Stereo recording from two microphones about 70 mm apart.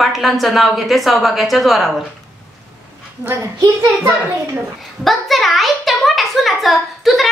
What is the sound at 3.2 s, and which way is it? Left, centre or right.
Speech, right.